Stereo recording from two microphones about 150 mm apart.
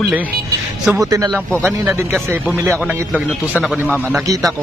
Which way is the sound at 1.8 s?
15° right (ahead or behind).